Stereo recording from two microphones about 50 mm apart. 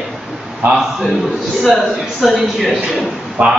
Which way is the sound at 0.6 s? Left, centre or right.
Right.